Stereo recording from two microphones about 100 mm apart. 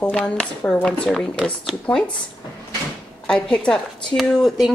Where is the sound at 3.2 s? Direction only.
10° left (ahead or behind).